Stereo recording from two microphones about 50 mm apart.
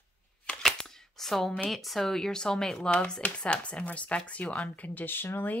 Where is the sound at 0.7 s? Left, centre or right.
Centre.